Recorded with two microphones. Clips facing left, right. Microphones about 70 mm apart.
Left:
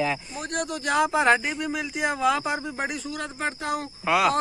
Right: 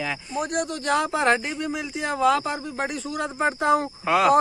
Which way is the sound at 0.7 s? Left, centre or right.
Centre.